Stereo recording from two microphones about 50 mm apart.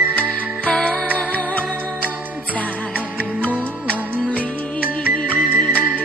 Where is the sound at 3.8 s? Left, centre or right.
Left.